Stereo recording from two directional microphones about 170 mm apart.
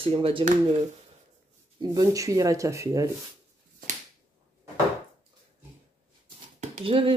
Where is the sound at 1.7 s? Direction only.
20° right (ahead or behind).